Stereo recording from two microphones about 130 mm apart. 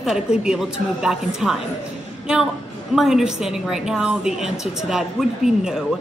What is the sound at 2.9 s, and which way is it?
A woman's voice, 5° right (ahead or behind).